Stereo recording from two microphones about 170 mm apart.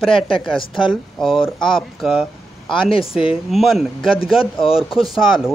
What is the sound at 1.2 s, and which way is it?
Speech, centre (ahead or behind).